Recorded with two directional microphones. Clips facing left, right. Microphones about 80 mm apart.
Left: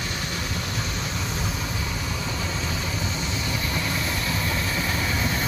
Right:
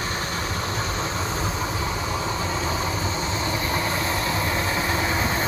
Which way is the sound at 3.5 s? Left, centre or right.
Right.